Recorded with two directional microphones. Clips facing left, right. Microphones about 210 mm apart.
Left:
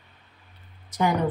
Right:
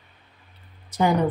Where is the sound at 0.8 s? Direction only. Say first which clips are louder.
Right 3 dB; 30° right (ahead or behind).